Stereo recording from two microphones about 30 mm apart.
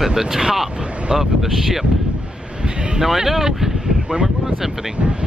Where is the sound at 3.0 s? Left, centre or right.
Centre.